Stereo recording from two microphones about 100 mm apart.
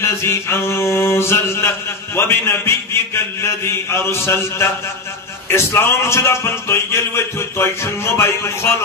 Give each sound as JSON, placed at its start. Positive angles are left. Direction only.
{"t": 0.0, "sound": "music", "side_deg": 25}